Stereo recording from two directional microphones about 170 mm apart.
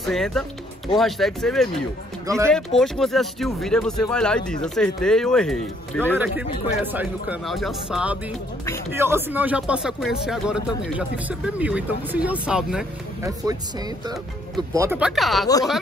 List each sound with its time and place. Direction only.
0.0 s speech: centre (ahead or behind)
2.2 s speech: 15° right (ahead or behind)
2.5 s speech: 5° left (ahead or behind)
6.1 s speech: 10° right (ahead or behind)
14.7 s speech: 15° right (ahead or behind)
15.0 s speech: centre (ahead or behind)